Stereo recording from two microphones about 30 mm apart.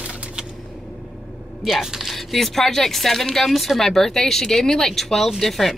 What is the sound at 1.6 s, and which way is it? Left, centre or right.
Speech, centre.